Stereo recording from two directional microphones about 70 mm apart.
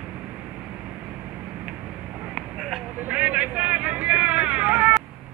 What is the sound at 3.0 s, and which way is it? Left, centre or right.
Vehicle, centre.